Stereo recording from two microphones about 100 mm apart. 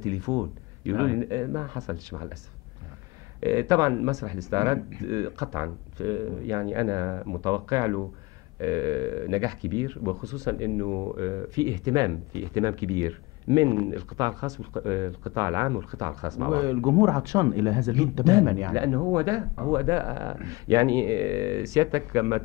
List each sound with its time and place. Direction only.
0.0 s speech: 40° right (ahead or behind)
3.3 s speech: 35° right (ahead or behind)